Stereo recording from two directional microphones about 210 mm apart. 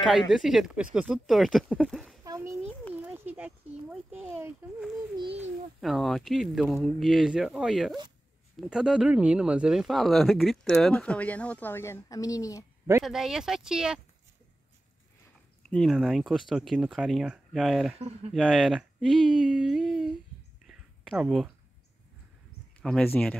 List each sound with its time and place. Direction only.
0.3 s speech: centre (ahead or behind)
2.2 s a sound: 15° right (ahead or behind)
2.9 s speech: 5° right (ahead or behind); by 12.6 s 15° left (ahead or behind)
13.0 s speech: centre (ahead or behind)
15.7 s speech: centre (ahead or behind)
17.9 s speech: 30° right (ahead or behind)
18.3 s speech: centre (ahead or behind)
20.6 s a sound: 5° right (ahead or behind)
22.8 s speech: 5° left (ahead or behind)